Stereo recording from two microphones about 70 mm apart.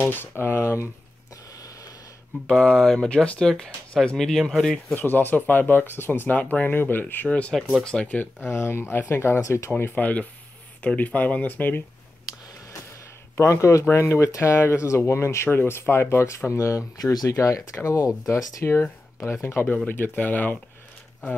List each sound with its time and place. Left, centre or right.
0.1 s speech: left
1.5 s a sound: left
2.4 s speech: centre
4.2 s speech: centre
4.9 s speech: left
7.2 s speech: centre
8.4 s speech: left
9.7 s speech: left
13.4 s speech: left
17.0 s speech: left
19.4 s speech: left